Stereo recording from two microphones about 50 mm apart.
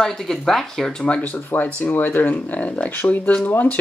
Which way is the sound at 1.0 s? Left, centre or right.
Left.